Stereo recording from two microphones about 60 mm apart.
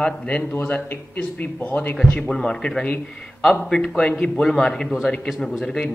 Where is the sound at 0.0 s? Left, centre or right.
Centre.